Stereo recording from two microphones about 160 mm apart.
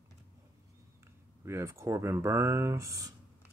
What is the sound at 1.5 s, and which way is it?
Speech, 15° right (ahead or behind).